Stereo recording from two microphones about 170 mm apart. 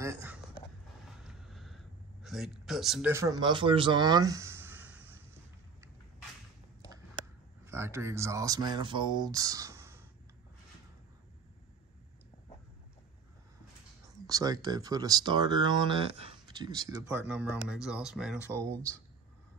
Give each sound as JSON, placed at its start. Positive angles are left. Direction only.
{"t": 0.0, "sound": "a sound", "side_deg": -15}
{"t": 1.2, "sound": "a sound", "side_deg": 0}
{"t": 3.1, "sound": "speech", "side_deg": -15}
{"t": 3.3, "sound": "speech", "side_deg": -30}
{"t": 7.6, "sound": "speech", "side_deg": -15}
{"t": 14.2, "sound": "speech", "side_deg": -20}
{"t": 17.1, "sound": "speech", "side_deg": -10}